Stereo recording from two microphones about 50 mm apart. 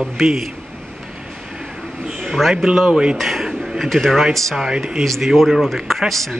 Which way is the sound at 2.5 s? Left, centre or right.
Centre.